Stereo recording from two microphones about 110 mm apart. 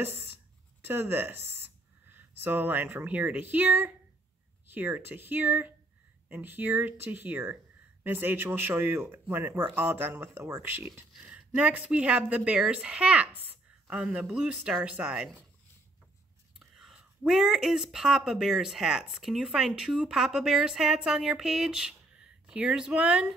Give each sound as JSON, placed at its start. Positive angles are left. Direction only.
{"t": 0.0, "sound": "speech", "side_deg": -20}
{"t": 16.5, "sound": "speech", "side_deg": -5}